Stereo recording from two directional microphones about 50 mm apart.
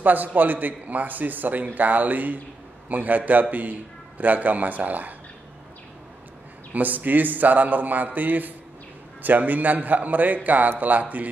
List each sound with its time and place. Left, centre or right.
0.0 s a man's voice: right
6.7 s a man's voice: right